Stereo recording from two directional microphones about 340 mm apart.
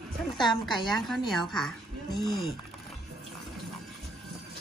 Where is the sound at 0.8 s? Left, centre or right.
Centre.